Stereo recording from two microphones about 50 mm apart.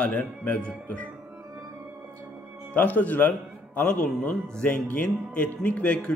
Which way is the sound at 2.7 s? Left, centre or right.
Left.